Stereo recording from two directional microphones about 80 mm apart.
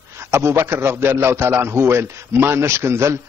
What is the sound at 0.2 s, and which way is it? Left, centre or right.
A man's voice, right.